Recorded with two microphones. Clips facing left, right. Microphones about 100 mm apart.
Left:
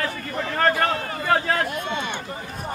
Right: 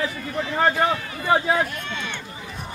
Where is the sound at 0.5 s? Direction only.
10° right (ahead or behind).